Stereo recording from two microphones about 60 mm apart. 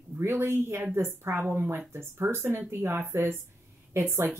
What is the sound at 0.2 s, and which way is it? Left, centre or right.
Speech, right.